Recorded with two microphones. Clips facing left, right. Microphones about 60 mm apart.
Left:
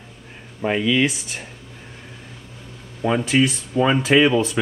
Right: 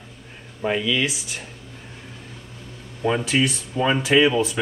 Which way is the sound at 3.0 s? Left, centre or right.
Centre.